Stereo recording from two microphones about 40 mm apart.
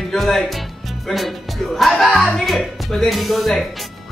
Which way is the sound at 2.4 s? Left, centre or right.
Centre.